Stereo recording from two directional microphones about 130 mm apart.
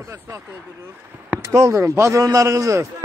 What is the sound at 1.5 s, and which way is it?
A man's voice, 20° right (ahead or behind).